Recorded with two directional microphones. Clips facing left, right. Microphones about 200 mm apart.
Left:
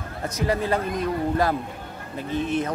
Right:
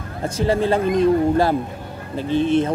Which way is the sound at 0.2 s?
30° right (ahead or behind).